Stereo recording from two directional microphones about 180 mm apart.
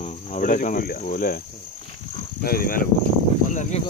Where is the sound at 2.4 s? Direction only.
55° left (ahead or behind).